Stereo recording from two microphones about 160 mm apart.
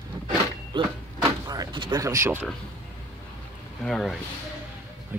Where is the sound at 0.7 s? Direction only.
30° right (ahead or behind).